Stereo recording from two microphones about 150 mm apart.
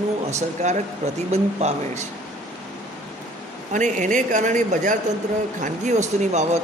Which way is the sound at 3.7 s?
55° right (ahead or behind).